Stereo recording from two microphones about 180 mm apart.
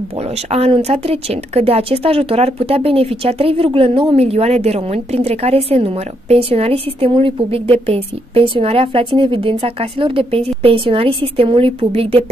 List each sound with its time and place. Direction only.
0.5 s a woman's voice: 35° right (ahead or behind)